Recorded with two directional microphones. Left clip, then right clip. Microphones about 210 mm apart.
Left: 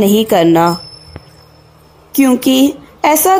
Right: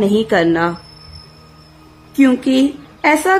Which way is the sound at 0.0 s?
20° left (ahead or behind).